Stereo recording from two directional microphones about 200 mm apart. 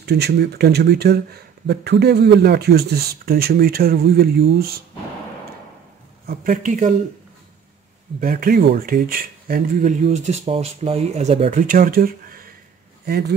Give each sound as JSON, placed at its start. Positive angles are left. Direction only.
{"t": 0.0, "sound": "speech", "side_deg": -55}
{"t": 6.2, "sound": "speech", "side_deg": -45}
{"t": 8.2, "sound": "speech", "side_deg": -45}